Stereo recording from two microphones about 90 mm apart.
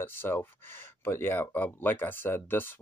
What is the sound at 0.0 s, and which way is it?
Speech, 25° left (ahead or behind).